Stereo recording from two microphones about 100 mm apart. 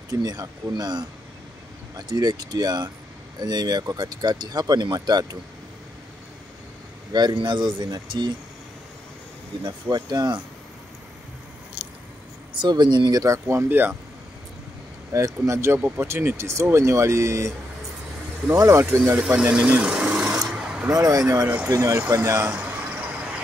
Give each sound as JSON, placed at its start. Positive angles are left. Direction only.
{"t": 0.1, "sound": "speech", "side_deg": -40}
{"t": 7.1, "sound": "speech", "side_deg": -45}
{"t": 9.6, "sound": "speech", "side_deg": -45}
{"t": 12.5, "sound": "speech", "side_deg": -50}
{"t": 15.1, "sound": "speech", "side_deg": -30}
{"t": 18.5, "sound": "speech", "side_deg": -30}
{"t": 19.1, "sound": "speech", "side_deg": -10}
{"t": 19.5, "sound": "filing", "side_deg": -10}
{"t": 20.9, "sound": "speech", "side_deg": -35}
{"t": 22.5, "sound": "vehicle", "side_deg": -10}